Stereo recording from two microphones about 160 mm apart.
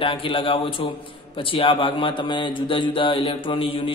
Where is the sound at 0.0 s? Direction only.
35° left (ahead or behind).